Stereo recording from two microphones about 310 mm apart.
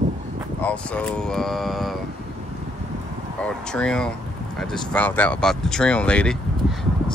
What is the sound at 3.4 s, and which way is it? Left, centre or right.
Speech, centre.